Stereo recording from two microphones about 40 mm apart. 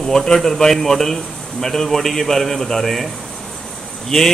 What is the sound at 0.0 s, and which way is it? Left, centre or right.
Speech, centre.